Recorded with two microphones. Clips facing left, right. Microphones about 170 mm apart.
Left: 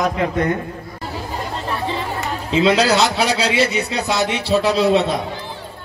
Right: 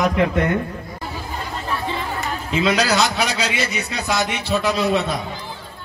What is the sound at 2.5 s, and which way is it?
A man's voice, 30° left (ahead or behind).